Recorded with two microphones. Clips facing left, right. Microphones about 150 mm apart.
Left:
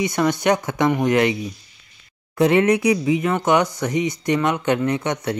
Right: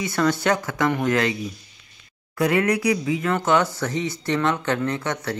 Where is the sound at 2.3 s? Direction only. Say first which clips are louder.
Left 5 dB; 25° left (ahead or behind).